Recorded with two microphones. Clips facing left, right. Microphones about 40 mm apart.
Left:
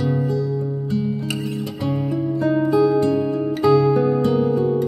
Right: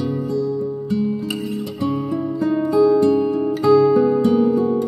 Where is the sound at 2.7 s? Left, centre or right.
Centre.